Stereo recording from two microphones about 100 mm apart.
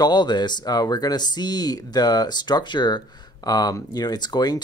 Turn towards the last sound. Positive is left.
turn(degrees=45)  # may be behind; listen again after turning